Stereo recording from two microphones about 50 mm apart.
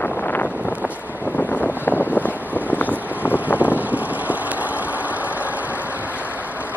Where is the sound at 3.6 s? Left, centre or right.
Right.